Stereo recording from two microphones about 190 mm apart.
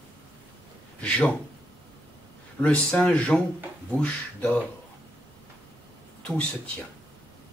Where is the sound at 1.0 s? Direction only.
5° left (ahead or behind).